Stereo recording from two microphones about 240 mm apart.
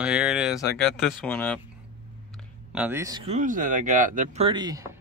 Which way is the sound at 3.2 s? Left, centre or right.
Right.